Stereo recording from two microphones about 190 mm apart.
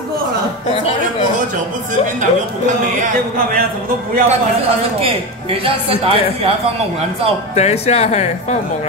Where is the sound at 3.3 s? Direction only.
50° right (ahead or behind).